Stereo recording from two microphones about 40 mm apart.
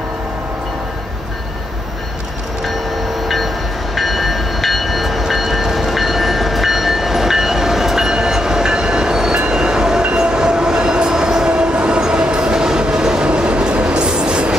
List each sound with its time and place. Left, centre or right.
3.9 s train: centre; by 14.5 s right